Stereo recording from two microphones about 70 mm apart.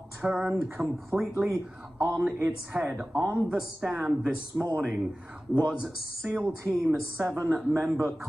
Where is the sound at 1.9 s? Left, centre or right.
Right.